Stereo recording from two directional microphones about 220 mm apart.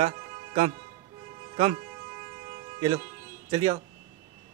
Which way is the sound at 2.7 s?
20° right (ahead or behind).